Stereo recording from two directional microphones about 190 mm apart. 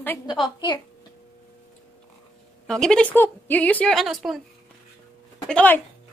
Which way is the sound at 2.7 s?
5° left (ahead or behind).